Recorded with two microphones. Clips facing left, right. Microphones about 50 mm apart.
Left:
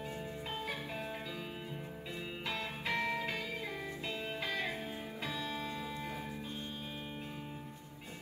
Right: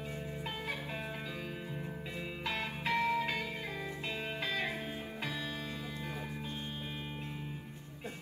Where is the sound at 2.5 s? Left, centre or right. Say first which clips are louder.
Right 3 dB; right.